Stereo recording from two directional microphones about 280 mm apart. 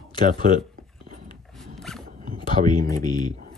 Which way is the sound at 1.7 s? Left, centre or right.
Centre.